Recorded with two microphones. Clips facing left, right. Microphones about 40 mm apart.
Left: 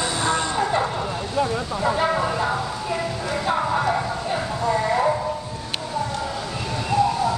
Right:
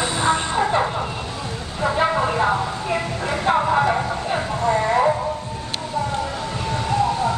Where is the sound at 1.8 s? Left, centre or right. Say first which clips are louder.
Right 3 dB; centre.